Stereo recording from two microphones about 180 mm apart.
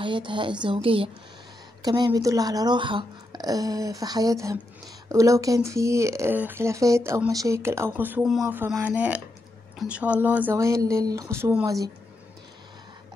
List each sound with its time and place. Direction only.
0.0 s speech: 25° right (ahead or behind)